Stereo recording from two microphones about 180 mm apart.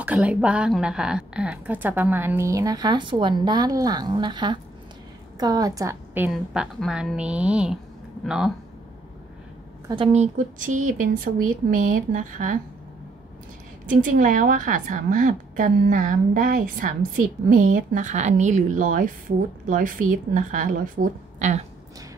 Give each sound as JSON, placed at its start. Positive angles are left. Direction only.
{"t": 0.0, "sound": "a woman's voice", "side_deg": -5}
{"t": 9.8, "sound": "a woman's voice", "side_deg": -30}
{"t": 13.8, "sound": "a woman's voice", "side_deg": -45}